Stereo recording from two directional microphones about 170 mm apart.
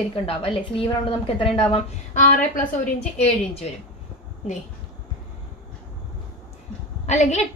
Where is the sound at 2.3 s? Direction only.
50° left (ahead or behind).